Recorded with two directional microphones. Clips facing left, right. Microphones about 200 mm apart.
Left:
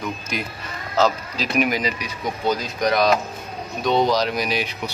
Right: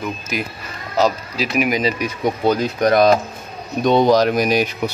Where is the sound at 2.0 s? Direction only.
60° right (ahead or behind).